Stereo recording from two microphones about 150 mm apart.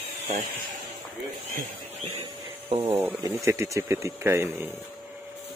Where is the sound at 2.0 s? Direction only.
40° right (ahead or behind).